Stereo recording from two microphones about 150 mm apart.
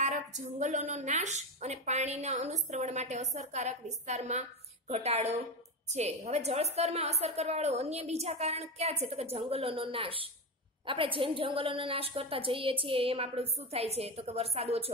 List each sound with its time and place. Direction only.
0.0 s a woman's voice: 50° right (ahead or behind)